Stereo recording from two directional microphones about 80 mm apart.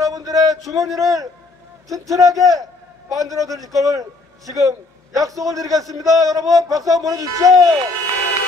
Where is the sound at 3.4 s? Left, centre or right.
Right.